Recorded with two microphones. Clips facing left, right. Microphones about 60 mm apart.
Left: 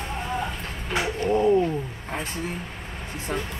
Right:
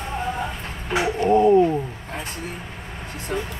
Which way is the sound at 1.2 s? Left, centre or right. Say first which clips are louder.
Right 5 dB; right.